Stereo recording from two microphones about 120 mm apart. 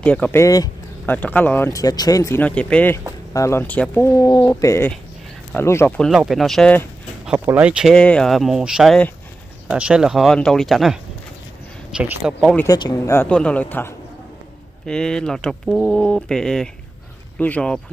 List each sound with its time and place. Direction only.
0.0 s speech: 10° left (ahead or behind)
0.4 s speech: 30° left (ahead or behind)
1.0 s speech: 15° left (ahead or behind)
1.7 s speech: 30° left (ahead or behind)
2.4 s speech: 10° left (ahead or behind)
3.3 s speech: 25° left (ahead or behind)
3.6 s speech: 15° left (ahead or behind)
5.9 s speech: centre (ahead or behind)
7.2 s speech: 10° right (ahead or behind)
7.9 s speech: 10° left (ahead or behind); by 12.4 s 10° right (ahead or behind)
12.4 s speech: 5° left (ahead or behind)
12.6 s speech: 30° left (ahead or behind)
13.3 s speech: 10° left (ahead or behind)